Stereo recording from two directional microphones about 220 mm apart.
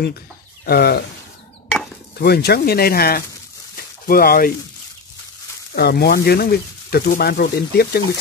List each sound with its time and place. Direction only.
0.7 s speech: 45° left (ahead or behind)
2.1 s speech: 45° left (ahead or behind)
5.8 s speech: 45° left (ahead or behind)